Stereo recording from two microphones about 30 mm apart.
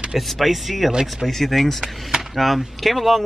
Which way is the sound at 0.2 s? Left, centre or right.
Centre.